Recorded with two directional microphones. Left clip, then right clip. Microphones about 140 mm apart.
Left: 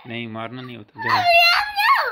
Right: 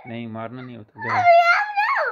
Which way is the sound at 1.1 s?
25° right (ahead or behind).